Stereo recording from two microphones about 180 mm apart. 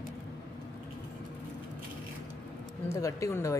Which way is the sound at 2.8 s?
15° left (ahead or behind).